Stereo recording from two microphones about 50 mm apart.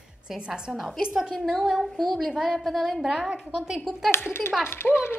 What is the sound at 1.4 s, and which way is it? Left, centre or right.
A woman's voice, centre.